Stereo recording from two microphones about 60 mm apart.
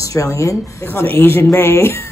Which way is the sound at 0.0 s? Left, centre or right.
Left.